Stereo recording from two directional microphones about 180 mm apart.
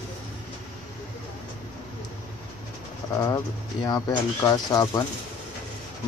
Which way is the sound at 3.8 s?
20° left (ahead or behind).